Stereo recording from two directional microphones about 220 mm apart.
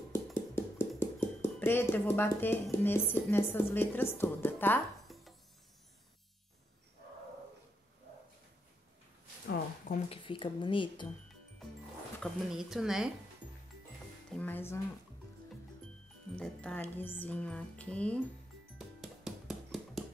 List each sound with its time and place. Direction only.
0.1 s speech: 10° left (ahead or behind)
10.0 s speech: 25° left (ahead or behind)
12.2 s speech: centre (ahead or behind)
14.3 s speech: 10° left (ahead or behind)
16.3 s speech: 5° left (ahead or behind)
18.8 s music: centre (ahead or behind)